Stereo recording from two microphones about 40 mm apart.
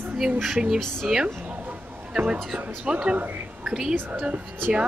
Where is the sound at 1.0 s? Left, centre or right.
Centre.